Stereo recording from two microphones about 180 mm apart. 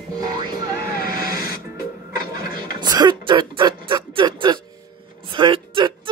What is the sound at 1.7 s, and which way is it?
Music, 20° right (ahead or behind).